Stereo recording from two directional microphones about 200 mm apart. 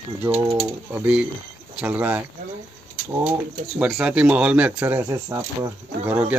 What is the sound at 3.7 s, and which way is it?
Speech, 5° right (ahead or behind).